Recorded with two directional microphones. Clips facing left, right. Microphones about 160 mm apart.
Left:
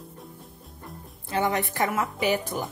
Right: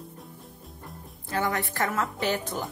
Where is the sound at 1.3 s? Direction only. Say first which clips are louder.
Left 3 dB; 20° left (ahead or behind).